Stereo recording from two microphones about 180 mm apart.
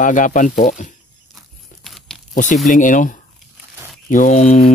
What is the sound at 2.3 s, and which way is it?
Speech, 45° left (ahead or behind).